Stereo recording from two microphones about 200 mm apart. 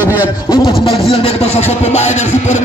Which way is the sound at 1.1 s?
30° left (ahead or behind).